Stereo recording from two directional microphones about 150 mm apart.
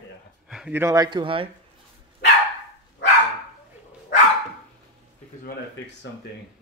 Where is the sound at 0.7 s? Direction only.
20° right (ahead or behind).